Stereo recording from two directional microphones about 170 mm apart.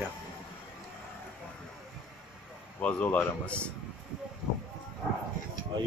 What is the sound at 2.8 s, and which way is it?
Speech, 10° left (ahead or behind).